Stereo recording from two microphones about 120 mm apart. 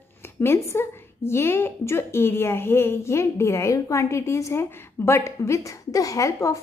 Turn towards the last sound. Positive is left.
turn(degrees=25)  # may be behind; listen again after turning